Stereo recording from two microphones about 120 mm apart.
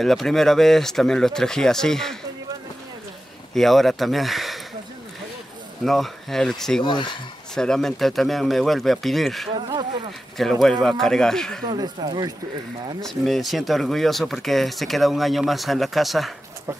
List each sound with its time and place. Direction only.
0.0 s speech: centre (ahead or behind)
3.5 s speech: centre (ahead or behind)
5.9 s speech: centre (ahead or behind)
6.8 s speech: 40° left (ahead or behind)
7.5 s speech: 5° left (ahead or behind)
9.6 s a sound: 40° right (ahead or behind)
10.3 s speech: centre (ahead or behind)
11.7 s speech: 35° right (ahead or behind)
13.0 s speech: centre (ahead or behind)